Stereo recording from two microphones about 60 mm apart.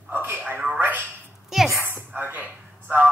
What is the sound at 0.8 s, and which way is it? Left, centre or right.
Telephone, right.